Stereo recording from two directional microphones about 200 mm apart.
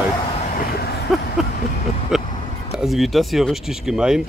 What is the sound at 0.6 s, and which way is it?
Vehicle, 50° left (ahead or behind).